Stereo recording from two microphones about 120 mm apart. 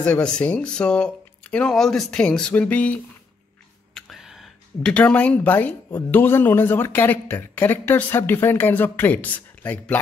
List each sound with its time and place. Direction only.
0.0 s speech: 10° left (ahead or behind)
4.1 s a sound: 5° right (ahead or behind)
4.8 s speech: 10° left (ahead or behind)